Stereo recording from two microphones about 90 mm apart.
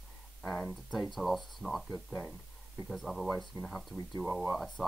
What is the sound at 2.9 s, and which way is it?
Speech, centre (ahead or behind).